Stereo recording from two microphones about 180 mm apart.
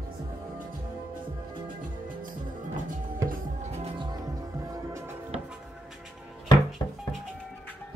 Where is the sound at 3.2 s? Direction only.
35° right (ahead or behind).